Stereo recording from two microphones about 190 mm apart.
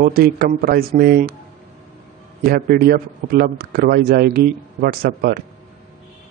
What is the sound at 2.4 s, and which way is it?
A man's voice, 50° right (ahead or behind).